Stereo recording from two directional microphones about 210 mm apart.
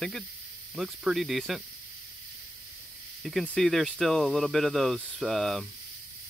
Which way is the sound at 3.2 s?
Centre (ahead or behind).